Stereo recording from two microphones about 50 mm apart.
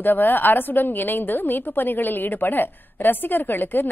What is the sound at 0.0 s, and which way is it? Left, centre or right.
A woman's voice, left.